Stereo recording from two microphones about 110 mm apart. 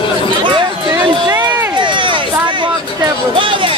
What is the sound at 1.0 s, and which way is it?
Run, 40° right (ahead or behind).